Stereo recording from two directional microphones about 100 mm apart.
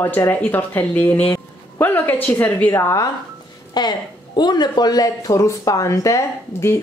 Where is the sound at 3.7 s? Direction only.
45° left (ahead or behind).